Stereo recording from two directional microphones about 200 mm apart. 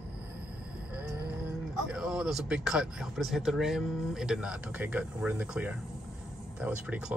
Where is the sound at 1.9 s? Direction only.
5° right (ahead or behind).